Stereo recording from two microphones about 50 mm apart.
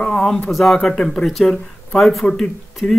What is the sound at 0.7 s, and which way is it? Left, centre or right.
Speech, centre.